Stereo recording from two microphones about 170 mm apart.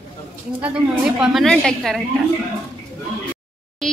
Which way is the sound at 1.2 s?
Centre (ahead or behind).